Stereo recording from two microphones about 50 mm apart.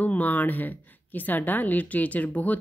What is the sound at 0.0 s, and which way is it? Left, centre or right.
Speech, left.